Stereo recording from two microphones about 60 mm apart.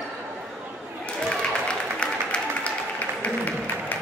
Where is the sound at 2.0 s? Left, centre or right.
Centre.